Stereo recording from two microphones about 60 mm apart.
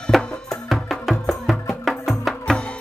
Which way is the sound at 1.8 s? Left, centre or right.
Centre.